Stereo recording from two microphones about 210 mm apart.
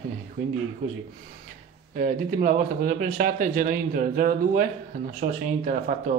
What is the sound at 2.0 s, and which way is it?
Speech, 35° right (ahead or behind).